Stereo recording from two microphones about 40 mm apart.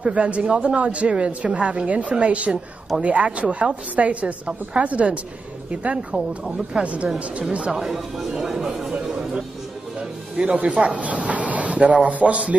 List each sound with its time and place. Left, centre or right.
0.0 s a woman's voice: right
6.1 s speech: centre
6.8 s a woman's voice: right
7.7 s speech: centre
10.3 s speech: right